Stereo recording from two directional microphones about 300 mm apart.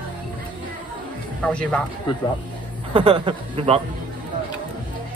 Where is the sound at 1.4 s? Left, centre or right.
Centre.